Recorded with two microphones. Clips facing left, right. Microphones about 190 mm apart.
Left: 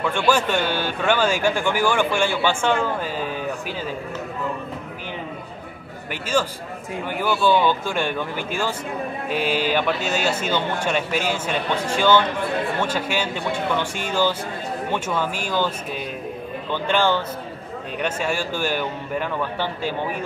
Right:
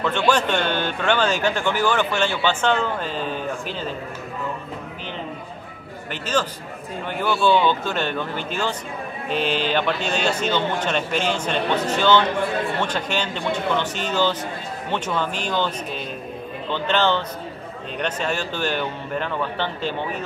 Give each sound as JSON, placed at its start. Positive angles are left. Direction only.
{"t": 0.0, "sound": "speech", "side_deg": 10}
{"t": 6.3, "sound": "speech", "side_deg": 10}
{"t": 16.7, "sound": "speech", "side_deg": 10}